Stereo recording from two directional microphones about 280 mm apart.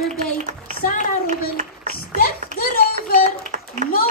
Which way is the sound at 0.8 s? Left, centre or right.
Left.